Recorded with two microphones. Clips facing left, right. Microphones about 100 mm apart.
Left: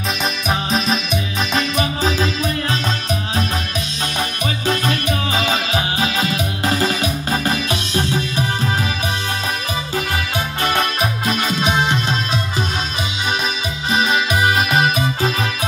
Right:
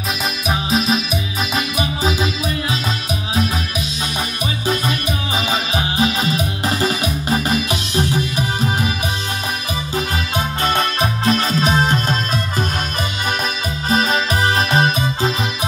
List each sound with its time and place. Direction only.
0.5 s music: centre (ahead or behind)
4.6 s music: 15° right (ahead or behind)
9.9 s music: 20° right (ahead or behind); by 12.6 s 40° right (ahead or behind)
13.8 s music: 40° right (ahead or behind)